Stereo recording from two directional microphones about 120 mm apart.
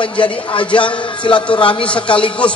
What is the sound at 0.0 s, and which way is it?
A man's voice, 45° left (ahead or behind).